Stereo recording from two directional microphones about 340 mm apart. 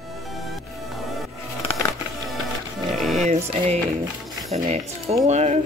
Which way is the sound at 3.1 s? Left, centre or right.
Centre.